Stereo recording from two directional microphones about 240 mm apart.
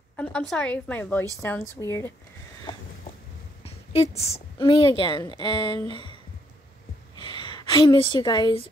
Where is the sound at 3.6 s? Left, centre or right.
Left.